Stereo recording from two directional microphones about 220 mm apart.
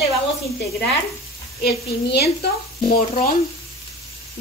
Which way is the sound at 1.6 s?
45° left (ahead or behind).